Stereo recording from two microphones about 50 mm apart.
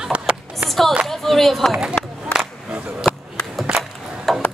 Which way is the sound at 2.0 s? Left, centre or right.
Left.